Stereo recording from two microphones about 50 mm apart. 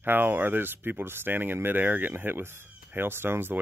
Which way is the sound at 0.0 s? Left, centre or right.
Right.